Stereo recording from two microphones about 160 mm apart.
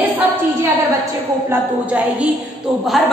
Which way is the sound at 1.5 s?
10° right (ahead or behind).